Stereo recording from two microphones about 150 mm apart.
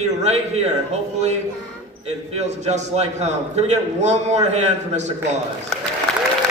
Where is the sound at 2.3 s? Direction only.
50° right (ahead or behind).